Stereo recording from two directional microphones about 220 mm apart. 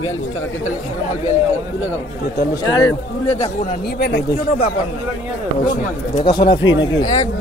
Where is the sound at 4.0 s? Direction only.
50° left (ahead or behind).